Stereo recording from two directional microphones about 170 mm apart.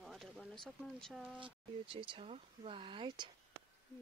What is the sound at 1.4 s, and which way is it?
Speech, 30° right (ahead or behind).